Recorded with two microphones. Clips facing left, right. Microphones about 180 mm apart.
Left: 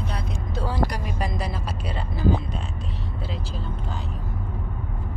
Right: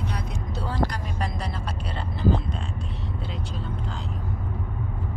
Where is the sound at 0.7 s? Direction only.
10° left (ahead or behind).